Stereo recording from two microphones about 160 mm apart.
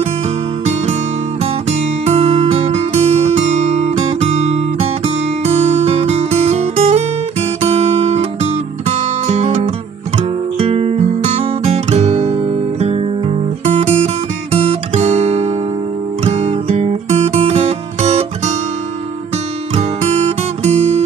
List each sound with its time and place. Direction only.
1.4 s music: 40° right (ahead or behind)
10.1 s guitar: 35° right (ahead or behind)
12.7 s music: 40° right (ahead or behind)
19.7 s music: 40° right (ahead or behind)